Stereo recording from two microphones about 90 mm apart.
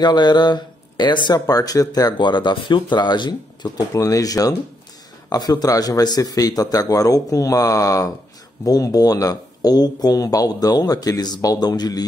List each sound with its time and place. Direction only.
0.0 s speech: 55° left (ahead or behind)